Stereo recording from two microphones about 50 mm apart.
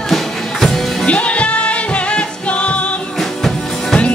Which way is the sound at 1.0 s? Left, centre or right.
Left.